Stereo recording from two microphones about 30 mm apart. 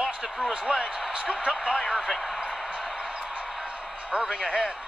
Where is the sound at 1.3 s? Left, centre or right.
Right.